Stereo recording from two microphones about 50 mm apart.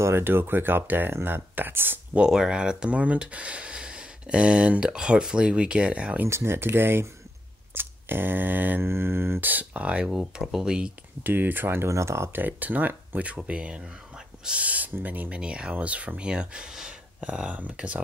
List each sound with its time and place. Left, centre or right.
0.0 s speech: right
2.1 s speech: centre
6.2 s speech: right
8.8 s speech: right
9.4 s speech: right
9.8 s speech: right
10.1 s speech: centre
11.2 s speech: right
11.9 s speech: right
12.3 s speech: right; by 14.6 s centre
14.6 s speech: right
16.3 s speech: centre
17.2 s speech: right